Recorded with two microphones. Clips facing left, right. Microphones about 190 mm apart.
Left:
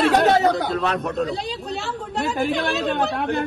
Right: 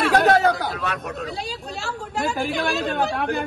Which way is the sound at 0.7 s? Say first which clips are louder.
Left 6 dB; 35° left (ahead or behind).